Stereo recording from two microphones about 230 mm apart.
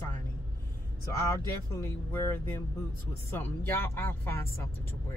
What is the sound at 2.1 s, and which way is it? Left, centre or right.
Speech, centre.